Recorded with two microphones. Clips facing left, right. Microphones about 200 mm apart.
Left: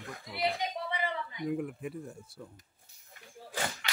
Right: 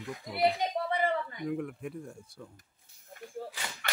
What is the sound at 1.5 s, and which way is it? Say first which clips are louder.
Speech: left 1 dB; 5° left (ahead or behind).